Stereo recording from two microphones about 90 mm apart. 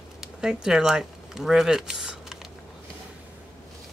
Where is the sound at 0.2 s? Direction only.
5° right (ahead or behind).